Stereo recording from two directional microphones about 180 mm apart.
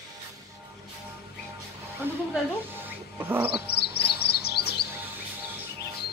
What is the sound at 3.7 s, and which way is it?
Chirp, 65° left (ahead or behind).